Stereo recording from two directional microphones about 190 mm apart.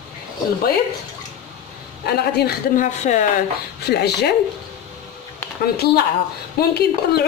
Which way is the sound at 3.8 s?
60° left (ahead or behind).